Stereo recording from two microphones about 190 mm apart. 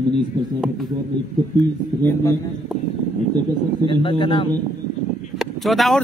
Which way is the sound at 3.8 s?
25° left (ahead or behind).